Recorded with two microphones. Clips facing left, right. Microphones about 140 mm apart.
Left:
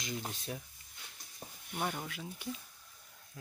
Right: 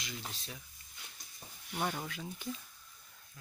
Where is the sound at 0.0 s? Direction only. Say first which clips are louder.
Left 5 dB; 45° left (ahead or behind).